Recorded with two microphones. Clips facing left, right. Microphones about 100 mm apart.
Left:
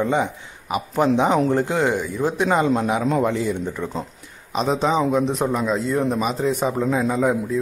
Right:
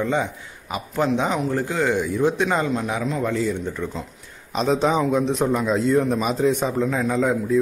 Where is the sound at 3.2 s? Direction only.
20° left (ahead or behind).